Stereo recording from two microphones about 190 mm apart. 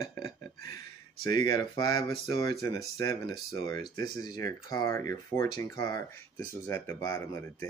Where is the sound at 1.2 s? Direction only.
20° left (ahead or behind).